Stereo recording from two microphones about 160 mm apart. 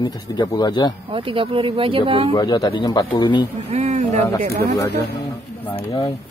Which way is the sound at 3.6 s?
40° right (ahead or behind).